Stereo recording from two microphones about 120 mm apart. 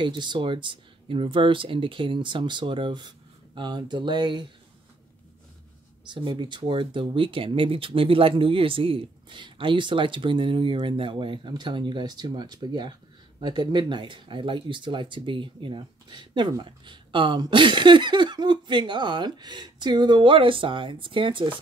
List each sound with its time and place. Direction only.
0.0 s speech: 40° right (ahead or behind)
6.0 s speech: 40° right (ahead or behind)